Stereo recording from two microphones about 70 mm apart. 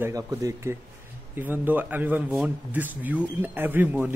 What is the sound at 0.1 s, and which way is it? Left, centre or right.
Speech, right.